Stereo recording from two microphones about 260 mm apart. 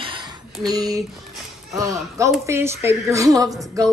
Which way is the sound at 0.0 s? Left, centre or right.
Centre.